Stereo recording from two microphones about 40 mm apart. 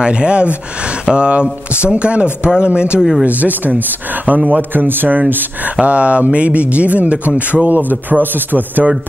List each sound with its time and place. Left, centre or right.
0.0 s speech: right
3.0 s speech: centre
3.3 s speech: right
5.8 s speech: right